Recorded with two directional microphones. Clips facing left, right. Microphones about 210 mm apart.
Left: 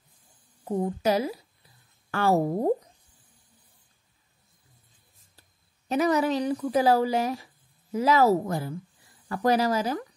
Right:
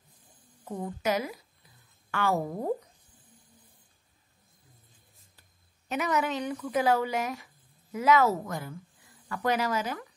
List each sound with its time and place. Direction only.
0.7 s speech: 30° left (ahead or behind)
5.9 s speech: 35° left (ahead or behind)